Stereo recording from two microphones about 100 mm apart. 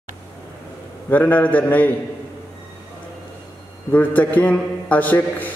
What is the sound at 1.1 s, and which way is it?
Speech, 20° left (ahead or behind).